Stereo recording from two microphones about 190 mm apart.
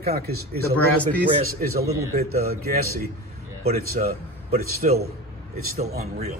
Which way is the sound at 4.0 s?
40° right (ahead or behind).